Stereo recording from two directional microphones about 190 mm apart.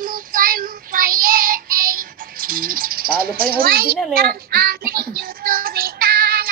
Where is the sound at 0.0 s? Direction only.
45° right (ahead or behind).